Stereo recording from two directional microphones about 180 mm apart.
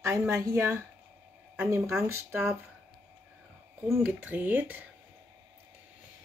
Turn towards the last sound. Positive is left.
turn(degrees=-10)  # may be behind; listen again after turning